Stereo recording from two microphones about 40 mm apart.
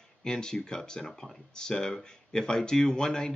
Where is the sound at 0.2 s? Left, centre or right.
Centre.